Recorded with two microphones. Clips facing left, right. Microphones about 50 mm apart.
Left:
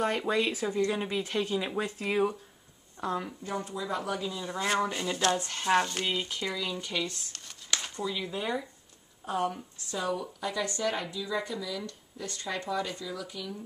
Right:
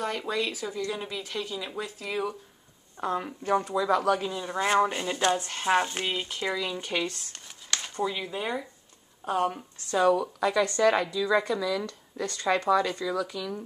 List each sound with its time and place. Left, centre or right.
0.3 s speech: left
3.0 s speech: centre
3.4 s speech: right
4.4 s speech: centre
6.8 s a woman's voice: right
7.9 s speech: right
8.2 s speech: centre
9.2 s a woman's voice: right
9.8 s speech: right
10.4 s speech: right